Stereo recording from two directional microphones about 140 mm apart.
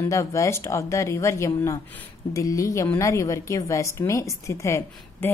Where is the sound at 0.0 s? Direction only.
20° left (ahead or behind).